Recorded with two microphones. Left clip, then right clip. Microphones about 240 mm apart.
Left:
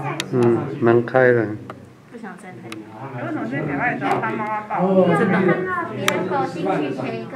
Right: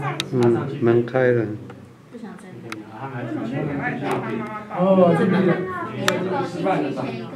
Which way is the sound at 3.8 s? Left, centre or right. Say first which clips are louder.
Left 7 dB; centre.